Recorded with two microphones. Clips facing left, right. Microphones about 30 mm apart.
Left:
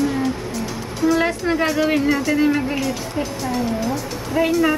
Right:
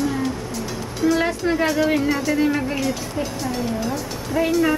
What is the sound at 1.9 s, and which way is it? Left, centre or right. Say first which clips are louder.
Music: left 2 dB; centre.